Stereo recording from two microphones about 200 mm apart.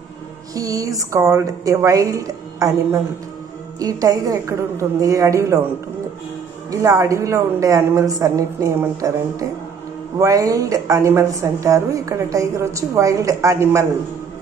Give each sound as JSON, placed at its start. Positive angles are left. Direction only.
{"t": 0.6, "sound": "a woman's voice", "side_deg": -15}
{"t": 6.7, "sound": "a woman's voice", "side_deg": -15}